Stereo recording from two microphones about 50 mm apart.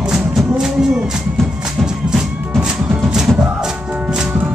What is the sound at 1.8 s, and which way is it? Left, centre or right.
Music, centre.